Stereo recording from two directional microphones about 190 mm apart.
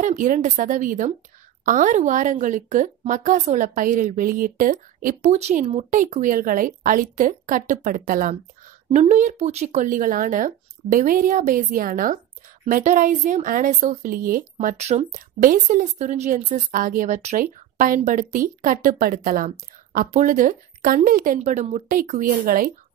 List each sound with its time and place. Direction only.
0.0 s speech: 45° right (ahead or behind)